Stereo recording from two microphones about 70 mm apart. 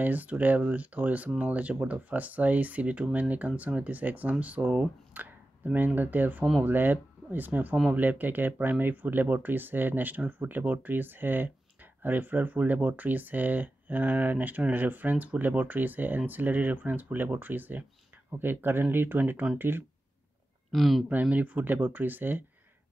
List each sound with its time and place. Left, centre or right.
0.0 s speech: right
20.7 s speech: centre
21.1 s speech: right